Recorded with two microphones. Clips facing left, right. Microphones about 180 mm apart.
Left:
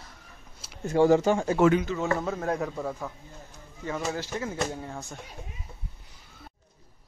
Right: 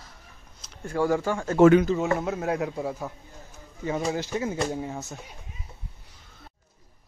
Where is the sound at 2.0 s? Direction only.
10° right (ahead or behind).